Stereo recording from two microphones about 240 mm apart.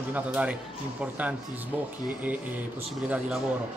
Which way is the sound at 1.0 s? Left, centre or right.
Centre.